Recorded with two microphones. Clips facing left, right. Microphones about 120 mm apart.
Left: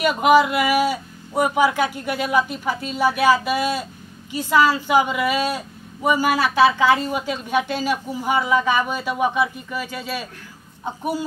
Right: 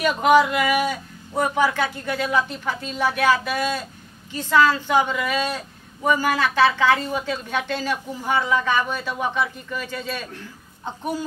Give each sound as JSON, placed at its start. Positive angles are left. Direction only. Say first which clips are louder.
{"t": 0.0, "sound": "speech", "louder": "left 1 dB", "side_deg": 10}